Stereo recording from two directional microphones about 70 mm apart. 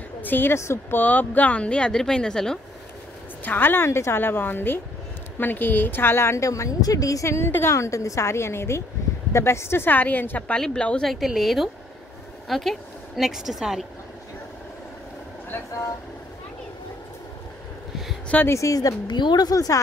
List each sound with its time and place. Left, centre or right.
0.2 s speech: left
0.6 s a woman's voice: left
0.9 s speech: left; by 2.6 s centre
3.4 s a woman's voice: left
7.2 s a woman's voice: left
10.5 s speech: centre
11.1 s a woman's voice: centre
18.5 s speech: left
19.5 s speech: left